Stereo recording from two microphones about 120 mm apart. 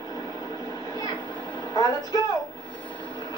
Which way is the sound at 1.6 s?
35° left (ahead or behind).